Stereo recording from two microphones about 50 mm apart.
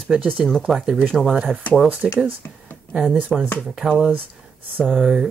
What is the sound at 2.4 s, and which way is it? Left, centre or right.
Speech, left.